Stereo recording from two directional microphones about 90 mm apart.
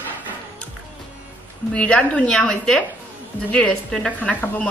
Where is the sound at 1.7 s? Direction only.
15° left (ahead or behind).